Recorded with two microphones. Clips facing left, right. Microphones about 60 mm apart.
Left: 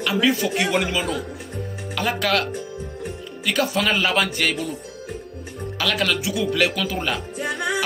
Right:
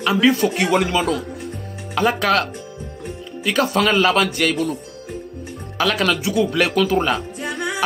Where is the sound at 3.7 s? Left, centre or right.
Right.